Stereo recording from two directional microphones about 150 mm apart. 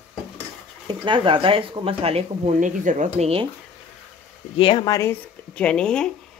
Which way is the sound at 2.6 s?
60° right (ahead or behind).